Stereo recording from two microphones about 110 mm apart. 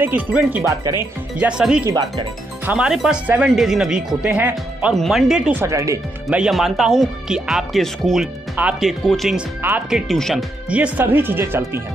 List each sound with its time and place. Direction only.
0.0 s speech: 15° right (ahead or behind)
0.7 s speech: 30° right (ahead or behind)
1.4 s speech: 5° right (ahead or behind)
4.9 s speech: centre (ahead or behind)
5.5 s speech: 25° right (ahead or behind)
6.3 s speech: 5° right (ahead or behind)
8.6 s speech: 15° right (ahead or behind)
9.0 s speech: centre (ahead or behind)
9.6 s speech: 20° right (ahead or behind)
9.8 s speech: 5° right (ahead or behind)
10.7 s speech: 15° right (ahead or behind)